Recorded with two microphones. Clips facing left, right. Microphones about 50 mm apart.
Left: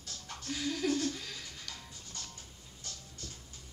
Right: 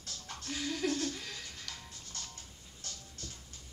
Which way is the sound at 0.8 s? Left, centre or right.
Centre.